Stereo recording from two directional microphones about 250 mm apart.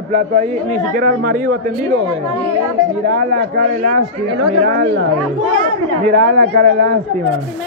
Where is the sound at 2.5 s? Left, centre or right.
Centre.